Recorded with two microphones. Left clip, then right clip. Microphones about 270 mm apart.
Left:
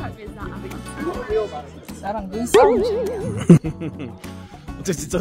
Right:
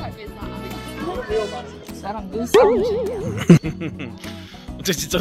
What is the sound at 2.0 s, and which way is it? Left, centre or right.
Speech, left.